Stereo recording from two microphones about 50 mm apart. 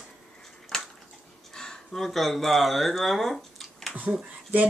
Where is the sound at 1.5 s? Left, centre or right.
Centre.